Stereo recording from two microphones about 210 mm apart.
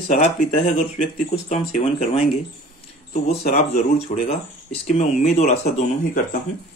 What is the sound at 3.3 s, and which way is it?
Speech, 35° left (ahead or behind).